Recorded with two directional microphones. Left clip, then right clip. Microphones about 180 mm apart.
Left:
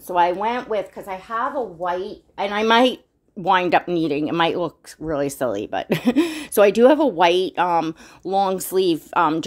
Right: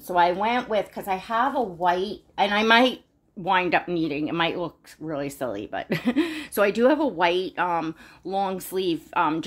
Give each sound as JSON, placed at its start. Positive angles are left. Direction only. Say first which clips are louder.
{"t": 0.1, "sound": "speech", "louder": "left 2 dB", "side_deg": 30}
{"t": 1.0, "sound": "a woman's voice", "louder": "right 1 dB", "side_deg": 10}
{"t": 3.4, "sound": "speech", "louder": "left 5 dB", "side_deg": 45}